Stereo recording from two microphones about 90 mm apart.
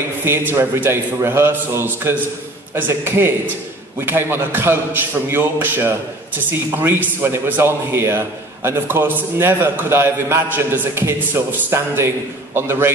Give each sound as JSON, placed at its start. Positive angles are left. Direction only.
{"t": 0.2, "sound": "a man's voice", "side_deg": -25}